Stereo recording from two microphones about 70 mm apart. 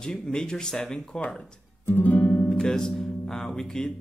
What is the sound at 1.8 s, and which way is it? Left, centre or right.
Speech, left.